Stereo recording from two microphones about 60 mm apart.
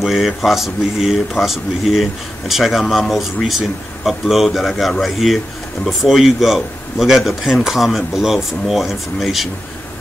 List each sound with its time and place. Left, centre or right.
0.0 s speech: centre